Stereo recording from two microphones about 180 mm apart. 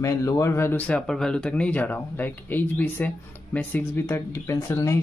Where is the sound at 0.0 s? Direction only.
15° left (ahead or behind).